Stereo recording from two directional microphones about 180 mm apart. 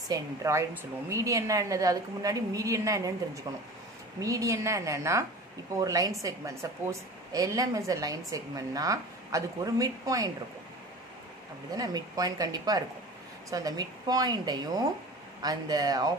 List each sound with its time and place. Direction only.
0.1 s a woman's voice: 15° right (ahead or behind)
4.2 s a woman's voice: 15° right (ahead or behind)
11.7 s a woman's voice: 20° right (ahead or behind)